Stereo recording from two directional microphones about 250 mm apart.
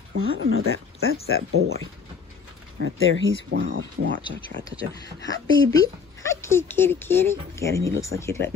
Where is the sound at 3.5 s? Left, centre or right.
Right.